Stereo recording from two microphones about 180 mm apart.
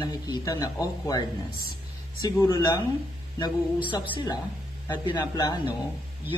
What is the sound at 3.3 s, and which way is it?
Speech, 25° left (ahead or behind).